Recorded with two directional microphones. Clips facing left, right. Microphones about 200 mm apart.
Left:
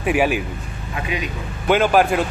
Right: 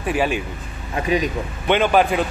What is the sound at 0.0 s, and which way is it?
Speech, 15° left (ahead or behind).